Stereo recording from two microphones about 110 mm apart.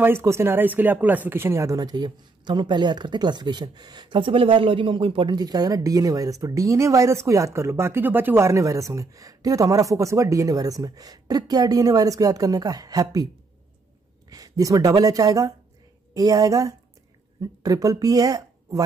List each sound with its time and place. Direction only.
0.0 s speech: 25° right (ahead or behind); by 5.3 s 50° right (ahead or behind)
5.3 s speech: 35° right (ahead or behind)
14.3 s speech: 30° right (ahead or behind)